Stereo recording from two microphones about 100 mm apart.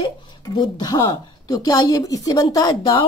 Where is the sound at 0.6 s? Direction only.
40° left (ahead or behind).